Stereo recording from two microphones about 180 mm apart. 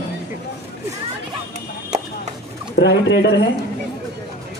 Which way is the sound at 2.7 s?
75° left (ahead or behind).